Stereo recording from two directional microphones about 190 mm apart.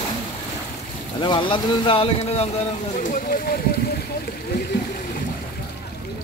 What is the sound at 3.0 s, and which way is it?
Speech, 50° left (ahead or behind).